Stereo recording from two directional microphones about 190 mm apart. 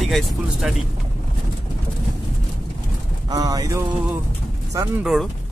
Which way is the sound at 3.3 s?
20° right (ahead or behind).